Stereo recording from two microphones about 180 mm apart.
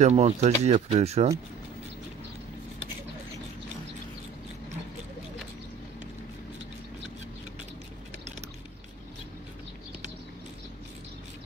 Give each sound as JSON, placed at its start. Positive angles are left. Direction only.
{"t": 0.0, "sound": "speech", "side_deg": -40}